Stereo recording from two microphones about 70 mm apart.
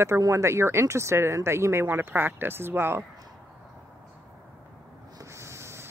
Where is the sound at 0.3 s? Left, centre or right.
Right.